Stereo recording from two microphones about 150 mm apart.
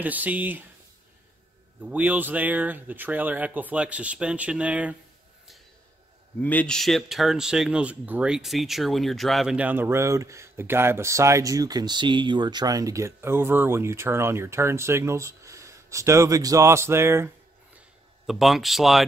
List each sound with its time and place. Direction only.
0.0 s speech: 10° right (ahead or behind)
1.8 s speech: 10° right (ahead or behind)
6.4 s speech: 10° left (ahead or behind); by 17.3 s 15° right (ahead or behind)
17.7 s a sound: centre (ahead or behind)